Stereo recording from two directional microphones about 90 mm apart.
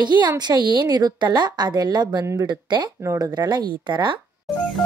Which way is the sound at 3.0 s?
45° right (ahead or behind).